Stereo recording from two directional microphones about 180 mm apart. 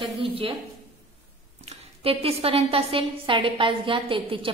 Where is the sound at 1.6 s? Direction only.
35° right (ahead or behind).